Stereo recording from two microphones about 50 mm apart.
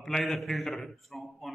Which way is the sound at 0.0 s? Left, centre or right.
Centre.